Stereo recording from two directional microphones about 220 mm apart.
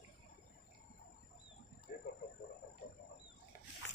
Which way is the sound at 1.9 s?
45° left (ahead or behind).